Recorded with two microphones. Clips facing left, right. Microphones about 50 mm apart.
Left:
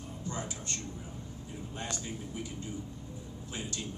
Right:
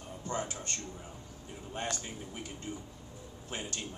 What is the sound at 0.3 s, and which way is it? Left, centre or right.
Speech, right.